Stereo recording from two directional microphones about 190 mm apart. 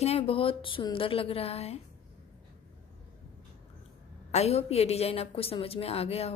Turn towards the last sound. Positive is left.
turn(degrees=35)  # may be behind; listen again after turning